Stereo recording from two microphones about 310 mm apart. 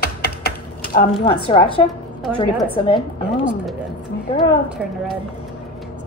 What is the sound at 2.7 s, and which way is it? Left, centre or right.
Speech, centre.